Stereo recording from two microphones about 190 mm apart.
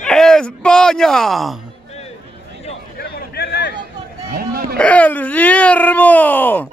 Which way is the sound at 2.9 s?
55° left (ahead or behind).